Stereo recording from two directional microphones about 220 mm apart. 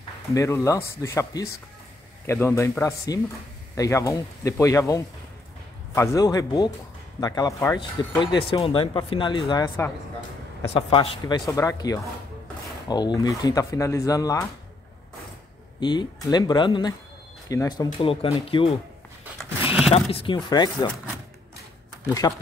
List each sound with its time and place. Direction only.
0.3 s speech: 15° left (ahead or behind)
15.8 s speech: 20° left (ahead or behind)
19.6 s a sound: 5° right (ahead or behind)
19.9 s speech: 25° left (ahead or behind)
22.2 s speech: 20° left (ahead or behind)